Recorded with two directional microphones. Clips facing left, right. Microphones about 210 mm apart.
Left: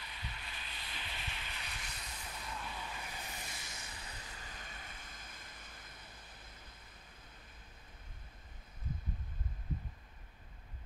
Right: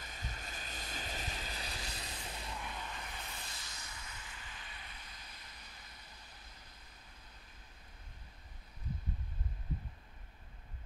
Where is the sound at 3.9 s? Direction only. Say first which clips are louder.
Left 1 dB; 35° left (ahead or behind); by 6.2 s 50° left (ahead or behind).